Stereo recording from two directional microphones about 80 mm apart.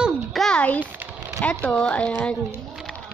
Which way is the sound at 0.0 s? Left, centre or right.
Centre.